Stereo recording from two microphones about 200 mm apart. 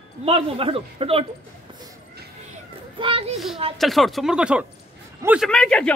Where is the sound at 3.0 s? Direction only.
25° right (ahead or behind).